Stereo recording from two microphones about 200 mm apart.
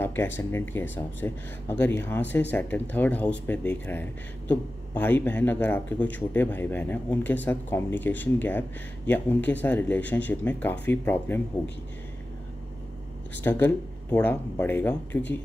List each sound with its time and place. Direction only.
0.0 s speech: 10° left (ahead or behind)
13.4 s speech: 10° left (ahead or behind)